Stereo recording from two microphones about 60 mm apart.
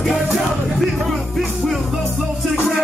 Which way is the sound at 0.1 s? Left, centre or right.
Centre.